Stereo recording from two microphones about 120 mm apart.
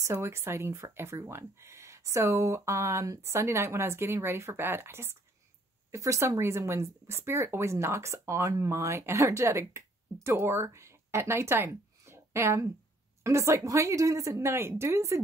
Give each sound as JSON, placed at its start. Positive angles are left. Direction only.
{"t": 0.0, "sound": "speech", "side_deg": -25}